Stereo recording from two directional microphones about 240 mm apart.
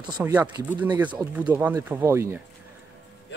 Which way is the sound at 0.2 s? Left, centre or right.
Centre.